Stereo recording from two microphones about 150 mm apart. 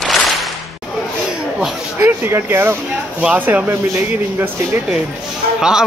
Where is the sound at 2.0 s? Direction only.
15° right (ahead or behind).